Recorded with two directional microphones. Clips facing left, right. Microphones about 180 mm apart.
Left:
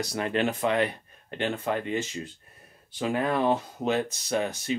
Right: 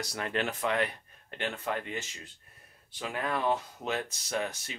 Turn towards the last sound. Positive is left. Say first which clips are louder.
# left 7 dB
turn(degrees=25)  # may be behind; listen again after turning